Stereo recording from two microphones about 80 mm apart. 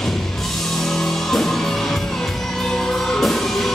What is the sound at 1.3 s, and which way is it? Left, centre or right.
Music, centre.